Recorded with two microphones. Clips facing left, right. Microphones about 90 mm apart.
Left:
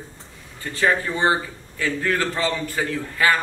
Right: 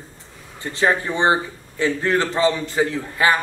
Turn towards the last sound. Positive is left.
turn(degrees=-20)  # may be behind; listen again after turning